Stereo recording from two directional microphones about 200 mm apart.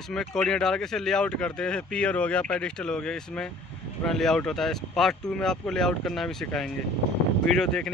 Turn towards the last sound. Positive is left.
turn(degrees=5)  # may be behind; listen again after turning